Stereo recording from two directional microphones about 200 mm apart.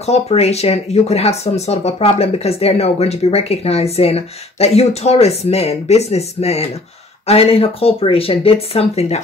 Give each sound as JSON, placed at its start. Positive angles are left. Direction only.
{"t": 0.0, "sound": "speech", "side_deg": 30}